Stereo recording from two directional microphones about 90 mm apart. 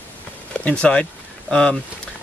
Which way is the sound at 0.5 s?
15° left (ahead or behind).